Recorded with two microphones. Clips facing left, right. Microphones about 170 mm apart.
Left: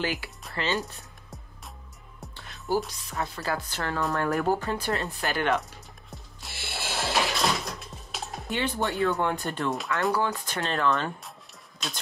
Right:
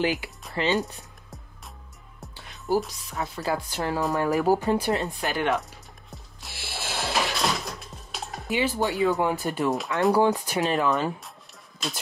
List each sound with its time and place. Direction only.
0.0 s speech: 20° right (ahead or behind)
0.7 s music: centre (ahead or behind)
2.7 s a woman's voice: centre (ahead or behind)
3.4 s speech: 10° right (ahead or behind)
4.0 s a woman's voice: centre (ahead or behind)
4.6 s speech: 15° right (ahead or behind)
5.0 s music: centre (ahead or behind)
10.2 s speech: 15° right (ahead or behind)